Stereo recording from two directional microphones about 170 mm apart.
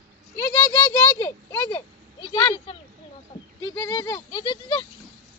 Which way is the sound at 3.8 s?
20° left (ahead or behind).